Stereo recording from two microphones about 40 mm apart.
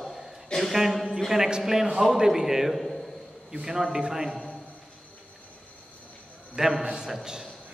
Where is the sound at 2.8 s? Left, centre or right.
Centre.